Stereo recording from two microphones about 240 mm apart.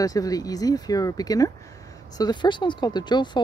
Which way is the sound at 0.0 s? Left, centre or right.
Centre.